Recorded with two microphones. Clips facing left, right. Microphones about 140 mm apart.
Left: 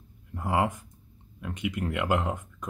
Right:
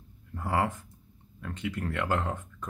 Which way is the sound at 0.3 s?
15° left (ahead or behind).